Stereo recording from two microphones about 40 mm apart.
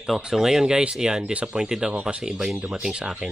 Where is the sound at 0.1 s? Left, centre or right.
Centre.